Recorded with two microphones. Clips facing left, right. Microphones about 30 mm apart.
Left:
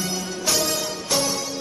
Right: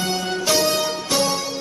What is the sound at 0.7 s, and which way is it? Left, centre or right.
Music, centre.